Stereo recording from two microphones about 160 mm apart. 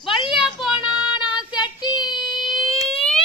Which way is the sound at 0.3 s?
5° right (ahead or behind).